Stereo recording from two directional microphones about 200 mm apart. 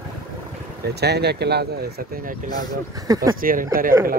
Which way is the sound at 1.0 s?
55° right (ahead or behind).